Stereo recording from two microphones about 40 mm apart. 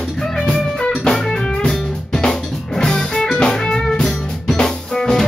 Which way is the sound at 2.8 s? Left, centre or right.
Centre.